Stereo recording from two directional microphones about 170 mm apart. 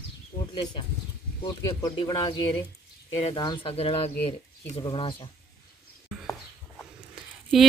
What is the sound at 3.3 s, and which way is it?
Speech, 25° left (ahead or behind).